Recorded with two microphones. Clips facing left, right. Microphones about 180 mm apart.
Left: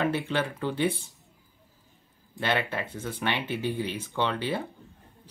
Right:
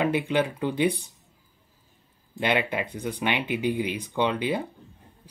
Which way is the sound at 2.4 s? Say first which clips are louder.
Right 3 dB; 15° right (ahead or behind).